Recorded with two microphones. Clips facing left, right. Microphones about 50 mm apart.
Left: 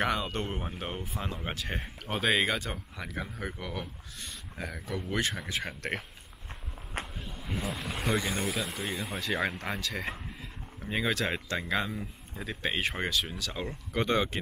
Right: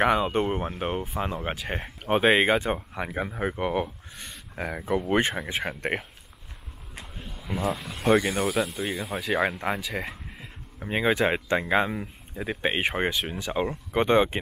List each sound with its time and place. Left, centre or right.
0.0 s speech: right
2.0 s speech: right
7.2 s speech: centre
9.6 s speech: centre
10.8 s speech: right